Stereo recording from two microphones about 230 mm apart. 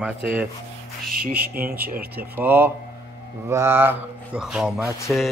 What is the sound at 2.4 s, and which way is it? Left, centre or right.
A man's voice, centre.